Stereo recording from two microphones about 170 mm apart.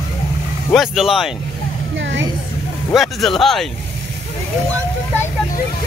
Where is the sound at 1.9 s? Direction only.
90° right.